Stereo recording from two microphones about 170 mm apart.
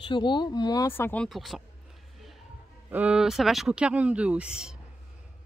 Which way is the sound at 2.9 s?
5° right (ahead or behind).